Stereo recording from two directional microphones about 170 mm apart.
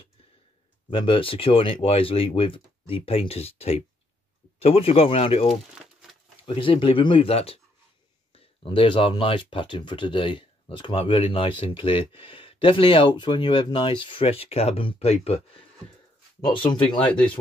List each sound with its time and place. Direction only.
0.8 s speech: 30° left (ahead or behind)
5.5 s crumpling: centre (ahead or behind)
6.4 s speech: 30° left (ahead or behind)
17.0 s speech: 5° left (ahead or behind)